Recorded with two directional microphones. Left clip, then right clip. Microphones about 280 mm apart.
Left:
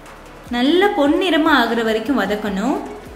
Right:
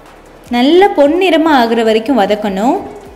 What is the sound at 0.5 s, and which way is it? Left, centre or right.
A woman's voice, centre.